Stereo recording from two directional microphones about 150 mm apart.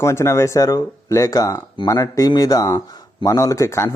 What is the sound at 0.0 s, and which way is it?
Speech, 20° left (ahead or behind).